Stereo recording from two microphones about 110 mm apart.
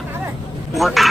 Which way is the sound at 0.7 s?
Centre (ahead or behind).